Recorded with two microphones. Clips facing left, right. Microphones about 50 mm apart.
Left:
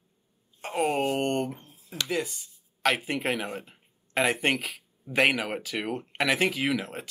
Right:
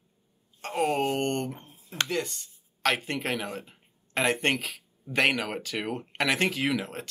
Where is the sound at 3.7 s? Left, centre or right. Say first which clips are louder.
Left 2 dB; centre.